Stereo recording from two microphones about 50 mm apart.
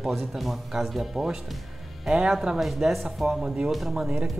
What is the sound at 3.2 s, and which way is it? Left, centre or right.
Speech, centre.